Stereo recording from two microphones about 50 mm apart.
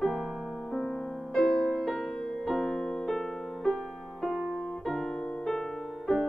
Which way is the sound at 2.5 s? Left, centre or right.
Centre.